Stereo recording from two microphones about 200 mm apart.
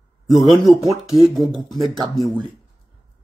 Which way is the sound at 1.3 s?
Centre (ahead or behind).